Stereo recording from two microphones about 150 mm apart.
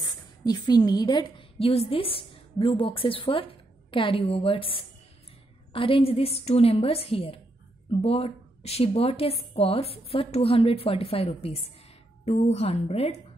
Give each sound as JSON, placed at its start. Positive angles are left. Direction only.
{"t": 0.0, "sound": "a woman's voice", "side_deg": 30}